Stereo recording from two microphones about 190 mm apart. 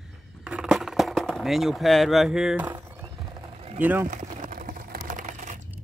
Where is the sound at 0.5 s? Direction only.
Centre (ahead or behind).